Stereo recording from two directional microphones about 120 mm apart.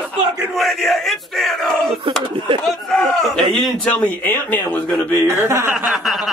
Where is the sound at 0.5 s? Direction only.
Centre (ahead or behind).